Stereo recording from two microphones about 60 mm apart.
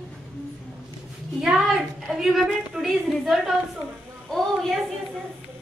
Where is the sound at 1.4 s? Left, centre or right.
Centre.